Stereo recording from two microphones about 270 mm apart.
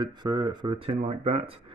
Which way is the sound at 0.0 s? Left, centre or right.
Centre.